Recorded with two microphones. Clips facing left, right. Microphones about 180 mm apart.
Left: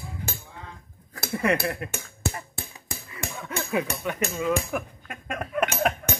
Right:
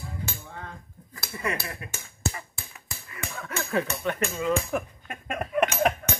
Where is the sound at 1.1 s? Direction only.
60° left (ahead or behind).